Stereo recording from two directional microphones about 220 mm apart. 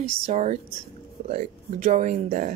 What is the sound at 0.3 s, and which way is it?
Speech, 30° right (ahead or behind).